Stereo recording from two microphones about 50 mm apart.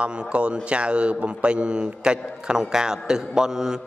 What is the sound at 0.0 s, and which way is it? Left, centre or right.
Speech, right.